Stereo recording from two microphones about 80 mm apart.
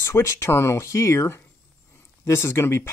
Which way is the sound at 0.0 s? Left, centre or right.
Left.